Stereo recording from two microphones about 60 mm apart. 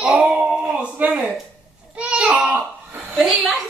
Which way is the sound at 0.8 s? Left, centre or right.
Right.